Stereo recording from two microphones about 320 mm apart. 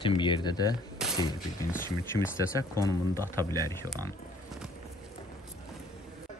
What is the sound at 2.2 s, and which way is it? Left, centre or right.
Speech, centre.